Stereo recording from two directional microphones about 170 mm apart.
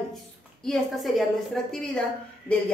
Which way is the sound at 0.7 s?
Centre (ahead or behind).